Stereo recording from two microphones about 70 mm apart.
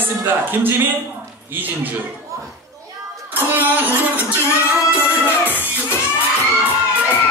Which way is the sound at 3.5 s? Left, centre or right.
Right.